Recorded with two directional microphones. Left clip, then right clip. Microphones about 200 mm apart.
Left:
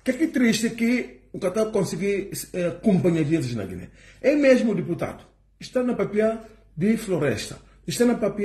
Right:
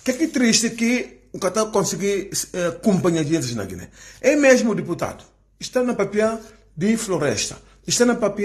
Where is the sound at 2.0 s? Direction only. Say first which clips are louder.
Right 3 dB; 45° right (ahead or behind).